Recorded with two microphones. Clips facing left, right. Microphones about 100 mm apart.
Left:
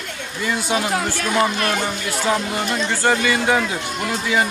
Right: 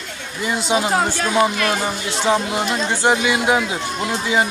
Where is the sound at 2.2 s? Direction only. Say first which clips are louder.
Right 3 dB; 20° right (ahead or behind).